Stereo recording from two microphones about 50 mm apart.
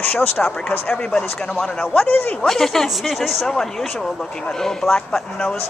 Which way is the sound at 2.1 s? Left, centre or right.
Left.